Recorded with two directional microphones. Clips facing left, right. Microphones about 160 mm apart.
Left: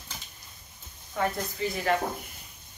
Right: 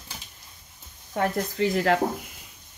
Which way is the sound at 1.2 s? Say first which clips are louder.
Right 3 dB; 65° right (ahead or behind).